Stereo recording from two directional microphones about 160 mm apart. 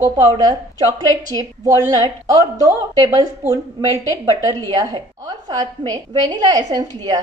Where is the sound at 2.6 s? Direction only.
20° right (ahead or behind).